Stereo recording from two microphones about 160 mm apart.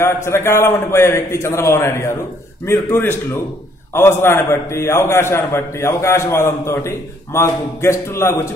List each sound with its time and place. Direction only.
0.0 s a man's voice: 15° left (ahead or behind)